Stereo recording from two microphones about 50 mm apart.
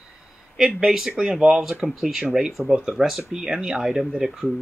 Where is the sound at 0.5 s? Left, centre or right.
Centre.